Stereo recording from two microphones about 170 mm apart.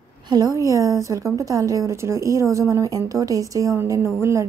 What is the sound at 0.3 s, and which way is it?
A woman's voice, 20° right (ahead or behind).